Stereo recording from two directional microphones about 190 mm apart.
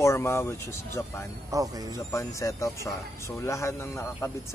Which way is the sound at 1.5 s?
15° right (ahead or behind).